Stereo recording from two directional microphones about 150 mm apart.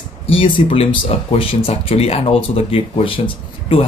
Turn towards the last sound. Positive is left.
turn(degrees=35)  # may be behind; listen again after turning